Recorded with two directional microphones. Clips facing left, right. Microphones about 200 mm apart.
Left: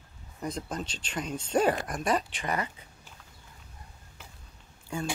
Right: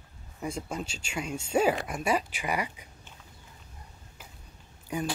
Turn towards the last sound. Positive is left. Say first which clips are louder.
# right 2 dB
turn(degrees=-15)  # may be behind; listen again after turning